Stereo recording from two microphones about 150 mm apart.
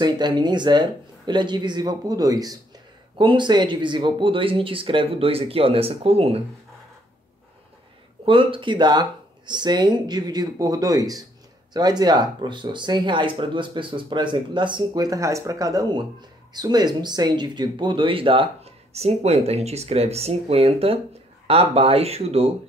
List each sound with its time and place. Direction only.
0.0 s speech: 30° right (ahead or behind)
8.3 s speech: 35° right (ahead or behind)